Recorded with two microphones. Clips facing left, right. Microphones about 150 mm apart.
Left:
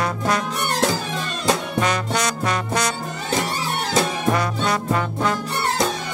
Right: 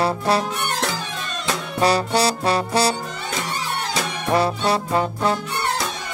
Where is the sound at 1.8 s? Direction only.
35° right (ahead or behind).